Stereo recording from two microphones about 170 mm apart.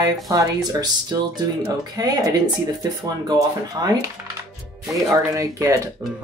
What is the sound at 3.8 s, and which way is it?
Speech, 25° right (ahead or behind).